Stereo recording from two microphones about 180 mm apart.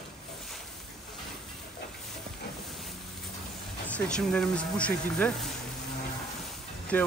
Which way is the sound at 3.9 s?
5° left (ahead or behind).